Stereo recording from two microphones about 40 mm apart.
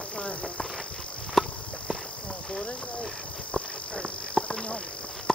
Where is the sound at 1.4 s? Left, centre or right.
Centre.